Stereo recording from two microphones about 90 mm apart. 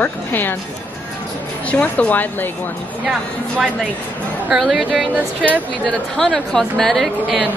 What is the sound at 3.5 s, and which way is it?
Speech, 10° left (ahead or behind).